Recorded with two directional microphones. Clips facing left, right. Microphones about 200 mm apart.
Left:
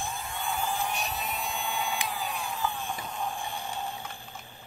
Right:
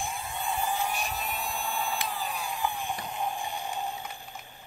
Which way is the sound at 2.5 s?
15° right (ahead or behind).